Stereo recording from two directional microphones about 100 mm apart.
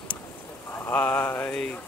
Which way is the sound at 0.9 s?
15° left (ahead or behind).